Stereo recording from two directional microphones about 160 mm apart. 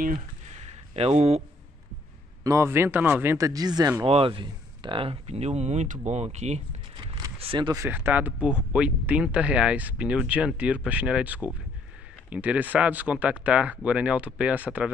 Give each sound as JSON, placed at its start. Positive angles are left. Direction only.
{"t": 0.9, "sound": "speech", "side_deg": -40}
{"t": 2.4, "sound": "speech", "side_deg": -15}
{"t": 4.0, "sound": "speech", "side_deg": -35}
{"t": 7.3, "sound": "speech", "side_deg": -30}
{"t": 7.8, "sound": "speech", "side_deg": -10}